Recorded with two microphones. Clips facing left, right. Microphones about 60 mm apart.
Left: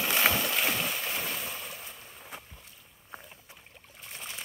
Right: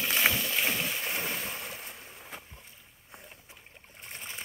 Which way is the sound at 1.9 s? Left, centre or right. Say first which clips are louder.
Even; centre.